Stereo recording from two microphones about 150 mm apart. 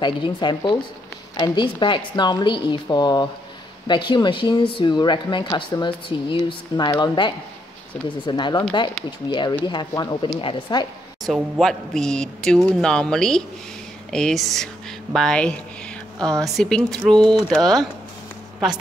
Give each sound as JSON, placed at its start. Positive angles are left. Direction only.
{"t": 0.0, "sound": "speech", "side_deg": 30}
{"t": 11.2, "sound": "speech", "side_deg": 0}